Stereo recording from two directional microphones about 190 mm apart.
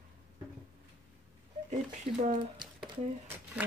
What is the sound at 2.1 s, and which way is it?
Speech, 30° right (ahead or behind).